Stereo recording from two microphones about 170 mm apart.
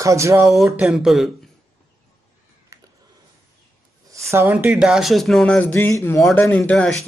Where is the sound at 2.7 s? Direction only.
20° right (ahead or behind).